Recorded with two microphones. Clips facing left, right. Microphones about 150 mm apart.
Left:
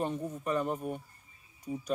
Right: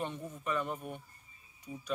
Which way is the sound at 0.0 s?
40° left (ahead or behind).